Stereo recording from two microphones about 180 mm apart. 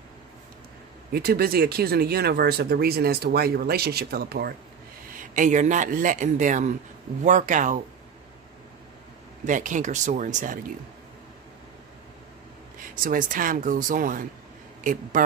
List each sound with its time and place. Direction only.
1.1 s speech: 60° right (ahead or behind)
5.1 s speech: 45° right (ahead or behind)
9.4 s speech: 45° right (ahead or behind)
12.7 s speech: 50° right (ahead or behind)